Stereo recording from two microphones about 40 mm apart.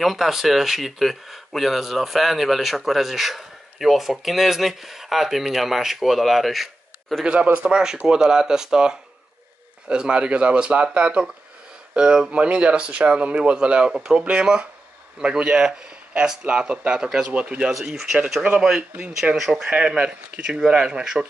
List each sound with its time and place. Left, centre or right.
0.0 s speech: centre
7.6 s speech: centre
17.3 s speech: right
18.8 s speech: right
19.3 s speech: centre
20.0 s speech: right